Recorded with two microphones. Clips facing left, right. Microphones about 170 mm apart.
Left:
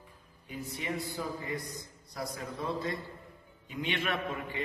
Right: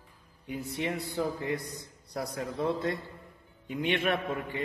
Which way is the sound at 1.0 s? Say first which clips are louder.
Right 5 dB; 65° right (ahead or behind).